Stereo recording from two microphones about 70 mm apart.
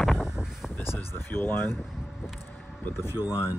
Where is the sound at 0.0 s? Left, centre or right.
Centre.